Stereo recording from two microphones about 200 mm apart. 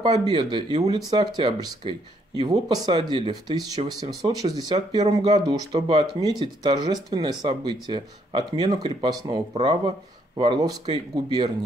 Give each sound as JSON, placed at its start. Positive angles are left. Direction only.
{"t": 0.0, "sound": "speech", "side_deg": -20}